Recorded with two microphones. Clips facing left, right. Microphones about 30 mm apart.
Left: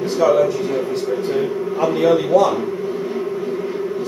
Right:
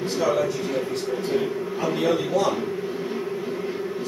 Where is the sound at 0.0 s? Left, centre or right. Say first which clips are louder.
Left 7 dB; centre.